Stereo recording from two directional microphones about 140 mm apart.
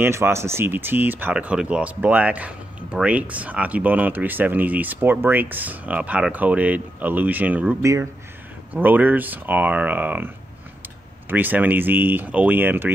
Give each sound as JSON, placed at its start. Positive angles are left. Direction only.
{"t": 0.0, "sound": "speech", "side_deg": -20}
{"t": 7.8, "sound": "speech", "side_deg": -20}